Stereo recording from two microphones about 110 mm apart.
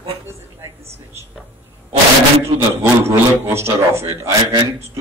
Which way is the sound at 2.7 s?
25° right (ahead or behind).